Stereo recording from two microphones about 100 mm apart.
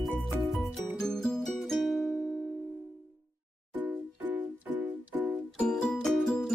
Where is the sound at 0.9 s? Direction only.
5° left (ahead or behind).